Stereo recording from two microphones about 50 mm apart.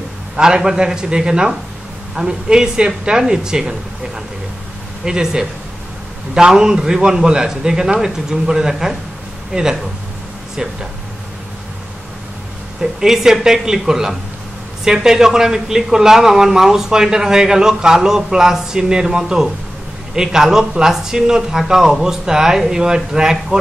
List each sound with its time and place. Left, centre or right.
0.4 s speech: centre
5.0 s speech: centre
13.0 s speech: centre